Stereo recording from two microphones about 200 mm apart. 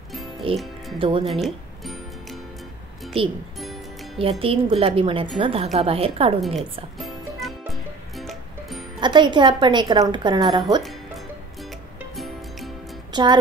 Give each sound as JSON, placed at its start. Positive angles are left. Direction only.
{"t": 0.4, "sound": "a woman's voice", "side_deg": -25}
{"t": 4.2, "sound": "a woman's voice", "side_deg": -30}
{"t": 6.4, "sound": "music", "side_deg": 0}
{"t": 9.0, "sound": "a woman's voice", "side_deg": -20}
{"t": 12.2, "sound": "music", "side_deg": 0}
{"t": 13.1, "sound": "speech", "side_deg": -20}